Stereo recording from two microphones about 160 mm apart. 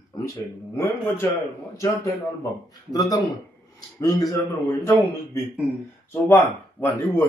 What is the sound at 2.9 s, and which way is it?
Speech, 25° left (ahead or behind).